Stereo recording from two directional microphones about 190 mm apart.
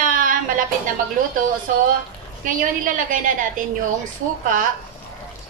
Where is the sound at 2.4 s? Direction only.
45° right (ahead or behind).